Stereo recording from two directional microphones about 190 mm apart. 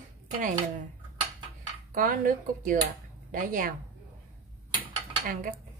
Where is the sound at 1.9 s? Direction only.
45° right (ahead or behind).